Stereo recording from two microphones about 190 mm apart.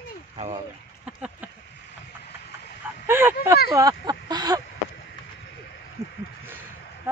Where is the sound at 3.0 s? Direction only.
10° right (ahead or behind).